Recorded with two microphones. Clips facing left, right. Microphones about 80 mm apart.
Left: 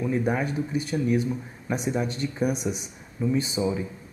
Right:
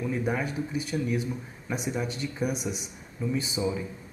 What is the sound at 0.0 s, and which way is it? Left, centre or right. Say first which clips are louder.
Speech: left 4 dB; centre.